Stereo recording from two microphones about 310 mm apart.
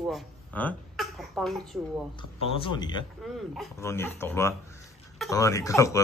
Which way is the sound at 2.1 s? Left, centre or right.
Centre.